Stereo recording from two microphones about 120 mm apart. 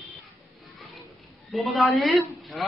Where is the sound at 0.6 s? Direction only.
Centre (ahead or behind).